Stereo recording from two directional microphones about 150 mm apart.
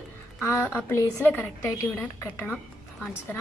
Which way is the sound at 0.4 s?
20° left (ahead or behind).